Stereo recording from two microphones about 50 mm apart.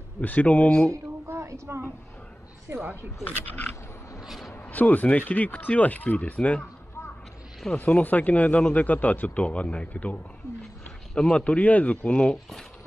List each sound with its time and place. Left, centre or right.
0.2 s a man's voice: left
1.2 s a sound: right
2.7 s speech: right
3.3 s speech: left
7.7 s a man's voice: left
11.1 s speech: centre
11.4 s a man's voice: left